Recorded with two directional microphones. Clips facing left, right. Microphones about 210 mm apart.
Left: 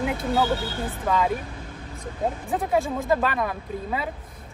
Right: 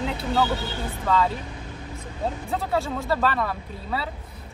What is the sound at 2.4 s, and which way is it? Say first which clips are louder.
Speech: left 3 dB; 15° left (ahead or behind).